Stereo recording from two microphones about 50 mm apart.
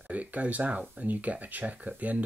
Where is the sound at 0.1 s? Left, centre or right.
Right.